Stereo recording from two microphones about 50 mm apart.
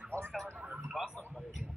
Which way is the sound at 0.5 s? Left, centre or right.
Right.